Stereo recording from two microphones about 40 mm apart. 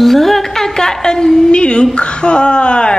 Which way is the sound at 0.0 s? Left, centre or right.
Centre.